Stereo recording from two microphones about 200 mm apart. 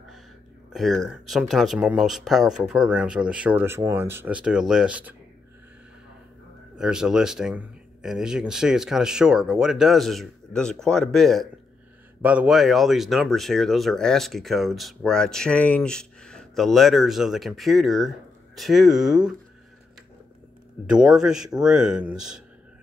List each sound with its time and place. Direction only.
0.7 s speech: centre (ahead or behind)
6.8 s speech: 5° right (ahead or behind)
20.9 s speech: 5° right (ahead or behind)